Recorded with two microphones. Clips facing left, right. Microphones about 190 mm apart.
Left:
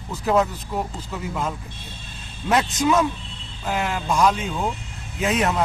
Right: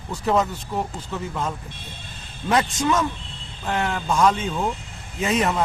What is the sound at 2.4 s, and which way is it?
A man's voice, 5° left (ahead or behind).